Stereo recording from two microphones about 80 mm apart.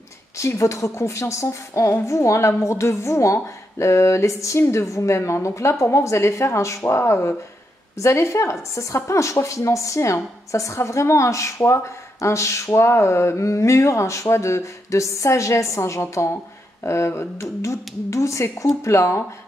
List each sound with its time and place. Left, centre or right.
0.4 s a woman's voice: left